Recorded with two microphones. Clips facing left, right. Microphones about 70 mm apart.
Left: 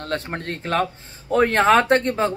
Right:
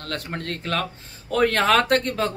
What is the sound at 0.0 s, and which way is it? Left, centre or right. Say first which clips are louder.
A man's voice: left 4 dB; left.